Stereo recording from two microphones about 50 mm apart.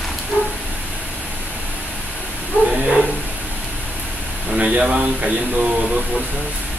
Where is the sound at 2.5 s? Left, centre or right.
Left.